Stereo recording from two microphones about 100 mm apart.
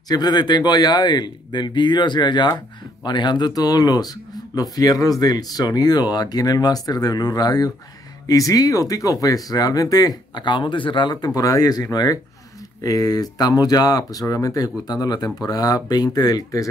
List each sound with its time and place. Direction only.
0.1 s speech: 45° left (ahead or behind)